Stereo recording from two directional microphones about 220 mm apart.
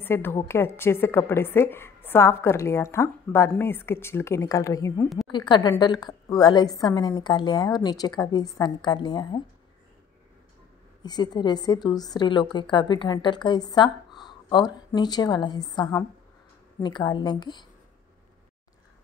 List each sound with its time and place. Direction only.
0.0 s a woman's voice: 10° left (ahead or behind)
11.0 s a woman's voice: 20° left (ahead or behind)